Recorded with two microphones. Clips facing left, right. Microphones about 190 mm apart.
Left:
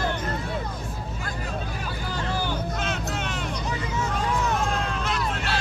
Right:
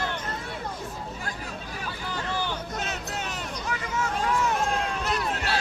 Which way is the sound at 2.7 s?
40° right (ahead or behind).